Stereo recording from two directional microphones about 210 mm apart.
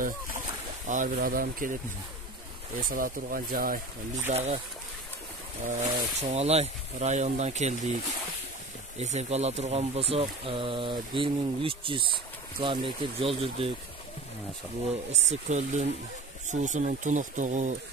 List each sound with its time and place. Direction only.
0.8 s speech: 40° right (ahead or behind)
2.8 s speech: 45° right (ahead or behind)
4.3 s speech: 30° right (ahead or behind)
5.7 s speech: 35° right (ahead or behind)
9.0 s speech: 30° right (ahead or behind)
15.2 s speech: 35° right (ahead or behind)